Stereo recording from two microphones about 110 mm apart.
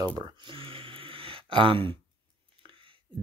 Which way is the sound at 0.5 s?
55° right (ahead or behind).